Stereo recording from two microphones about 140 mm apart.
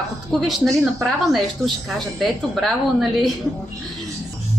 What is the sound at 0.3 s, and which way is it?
A woman's voice, centre (ahead or behind).